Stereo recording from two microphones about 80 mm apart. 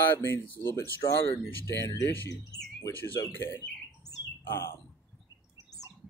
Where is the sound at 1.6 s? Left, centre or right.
Left.